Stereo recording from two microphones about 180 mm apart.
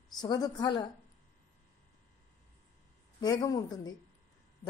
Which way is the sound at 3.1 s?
20° left (ahead or behind).